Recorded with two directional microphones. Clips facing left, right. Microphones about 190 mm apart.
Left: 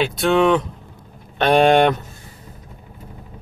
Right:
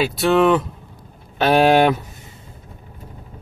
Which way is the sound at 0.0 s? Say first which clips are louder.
Right 1 dB; 5° right (ahead or behind).